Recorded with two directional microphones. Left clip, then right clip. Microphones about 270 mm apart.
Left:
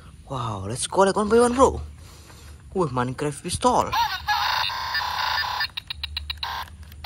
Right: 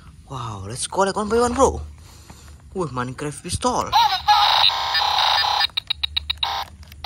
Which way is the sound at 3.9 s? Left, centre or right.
Right.